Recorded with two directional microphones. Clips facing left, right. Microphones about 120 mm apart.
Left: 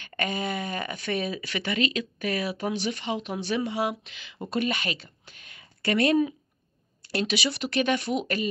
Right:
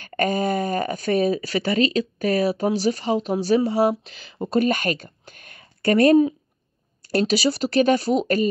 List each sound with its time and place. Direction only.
0.0 s speech: 40° right (ahead or behind)